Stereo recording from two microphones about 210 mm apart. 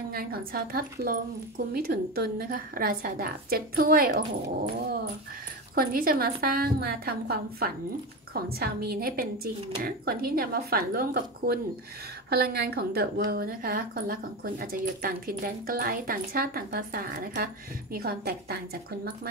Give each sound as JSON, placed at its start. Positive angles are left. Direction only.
{"t": 0.1, "sound": "a woman's voice", "side_deg": -45}
{"t": 5.8, "sound": "a woman's voice", "side_deg": -45}